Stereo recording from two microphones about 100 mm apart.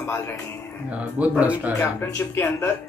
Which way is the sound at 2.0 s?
20° left (ahead or behind).